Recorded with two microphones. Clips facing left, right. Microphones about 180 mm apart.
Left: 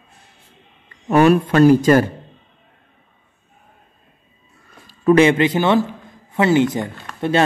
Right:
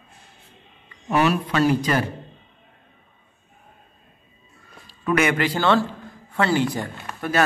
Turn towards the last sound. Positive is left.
turn(degrees=25)  # may be behind; listen again after turning